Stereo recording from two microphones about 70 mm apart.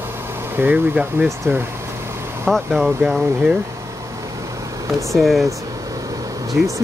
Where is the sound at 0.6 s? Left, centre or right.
Right.